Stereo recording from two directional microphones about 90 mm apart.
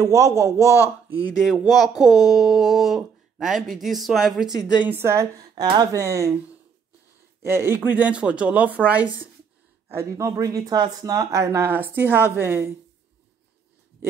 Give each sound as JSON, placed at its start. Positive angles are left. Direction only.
{"t": 0.0, "sound": "speech", "side_deg": -35}
{"t": 1.4, "sound": "speech", "side_deg": 0}
{"t": 4.6, "sound": "a woman's voice", "side_deg": 50}
{"t": 4.8, "sound": "speech", "side_deg": -25}
{"t": 5.5, "sound": "speech", "side_deg": -50}
{"t": 5.9, "sound": "speech", "side_deg": -35}
{"t": 7.4, "sound": "speech", "side_deg": -25}
{"t": 9.8, "sound": "speech", "side_deg": -35}